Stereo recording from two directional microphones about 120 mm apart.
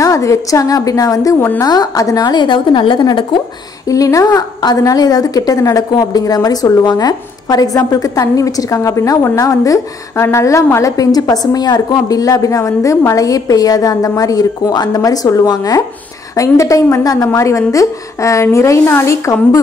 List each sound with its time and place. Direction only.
0.0 s a woman's voice: 25° left (ahead or behind)
3.8 s a woman's voice: 30° left (ahead or behind)